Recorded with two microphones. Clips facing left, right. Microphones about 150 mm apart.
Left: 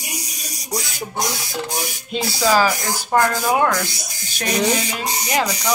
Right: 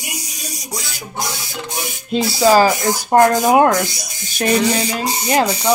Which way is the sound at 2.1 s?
40° right (ahead or behind).